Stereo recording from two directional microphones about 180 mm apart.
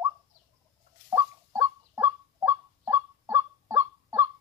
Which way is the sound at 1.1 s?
15° right (ahead or behind).